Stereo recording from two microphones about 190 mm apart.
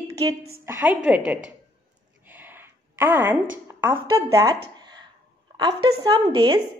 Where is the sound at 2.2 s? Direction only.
10° right (ahead or behind).